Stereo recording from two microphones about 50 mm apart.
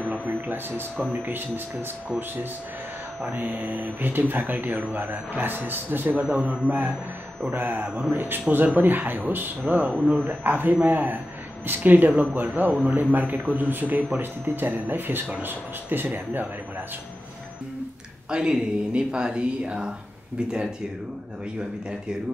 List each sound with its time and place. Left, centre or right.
0.0 s a sound: right
0.3 s speech: right
3.3 s speech: right
6.1 s a man's voice: right
7.5 s speech: right
8.1 s speech: right
9.8 s speech: right
18.3 s speech: centre